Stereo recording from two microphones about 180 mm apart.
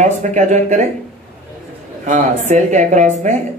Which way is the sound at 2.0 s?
40° right (ahead or behind).